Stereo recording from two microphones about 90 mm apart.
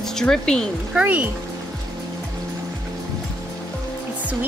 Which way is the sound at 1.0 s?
20° right (ahead or behind).